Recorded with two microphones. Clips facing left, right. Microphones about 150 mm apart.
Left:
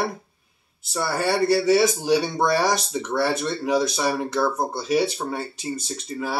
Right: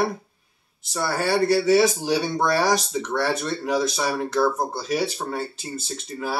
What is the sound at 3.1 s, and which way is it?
Speech, 10° left (ahead or behind).